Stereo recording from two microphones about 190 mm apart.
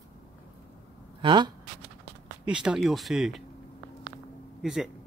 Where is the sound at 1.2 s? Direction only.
25° right (ahead or behind).